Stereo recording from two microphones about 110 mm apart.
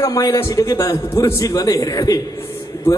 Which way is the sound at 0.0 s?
35° left (ahead or behind).